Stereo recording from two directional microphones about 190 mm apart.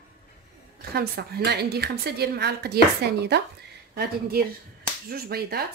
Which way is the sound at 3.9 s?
55° right (ahead or behind).